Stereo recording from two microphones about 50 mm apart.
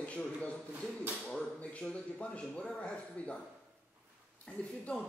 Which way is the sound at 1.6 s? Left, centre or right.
Left.